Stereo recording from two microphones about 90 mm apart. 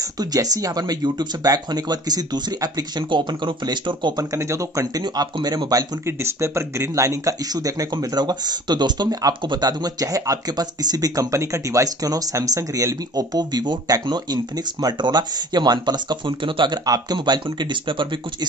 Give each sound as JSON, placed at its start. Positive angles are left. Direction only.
{"t": 0.2, "sound": "speech", "side_deg": -45}
{"t": 4.2, "sound": "speech", "side_deg": -35}
{"t": 5.0, "sound": "speech", "side_deg": -50}
{"t": 6.2, "sound": "speech", "side_deg": -30}